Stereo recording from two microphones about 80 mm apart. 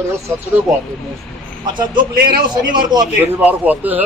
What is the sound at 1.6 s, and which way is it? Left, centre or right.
A man's voice, right.